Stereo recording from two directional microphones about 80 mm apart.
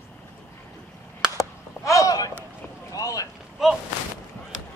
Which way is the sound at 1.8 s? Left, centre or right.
Left.